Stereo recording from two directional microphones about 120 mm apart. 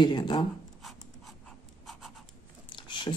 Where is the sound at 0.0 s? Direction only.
40° left (ahead or behind).